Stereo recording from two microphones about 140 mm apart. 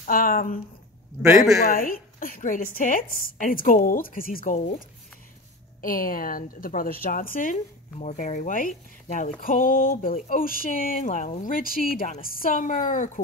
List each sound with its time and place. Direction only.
0.0 s speech: 80° left
1.6 s a woman's voice: 90° left
4.6 s speech: 60° left (ahead or behind)
5.8 s speech: 90° left
8.0 s speech: 60° left (ahead or behind)